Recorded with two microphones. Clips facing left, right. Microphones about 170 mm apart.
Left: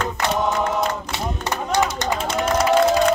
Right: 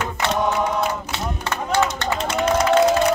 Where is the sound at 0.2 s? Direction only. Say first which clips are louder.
Right 1 dB; 5° left (ahead or behind).